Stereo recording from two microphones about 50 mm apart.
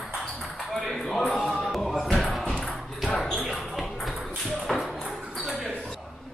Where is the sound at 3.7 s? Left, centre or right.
Centre.